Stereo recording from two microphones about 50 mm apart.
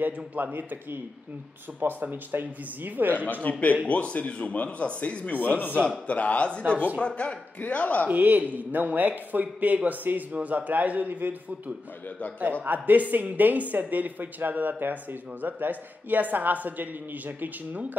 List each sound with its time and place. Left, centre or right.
0.0 s speech: right
1.8 s speech: right
3.5 s a man's voice: left
5.8 s a man's voice: left
8.1 s speech: right